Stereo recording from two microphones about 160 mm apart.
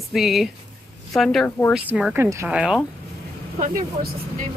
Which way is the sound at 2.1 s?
15° right (ahead or behind).